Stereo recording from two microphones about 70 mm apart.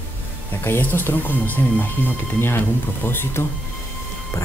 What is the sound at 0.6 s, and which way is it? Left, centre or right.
Speech, left.